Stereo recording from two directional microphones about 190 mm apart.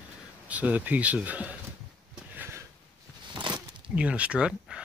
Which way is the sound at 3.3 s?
25° right (ahead or behind).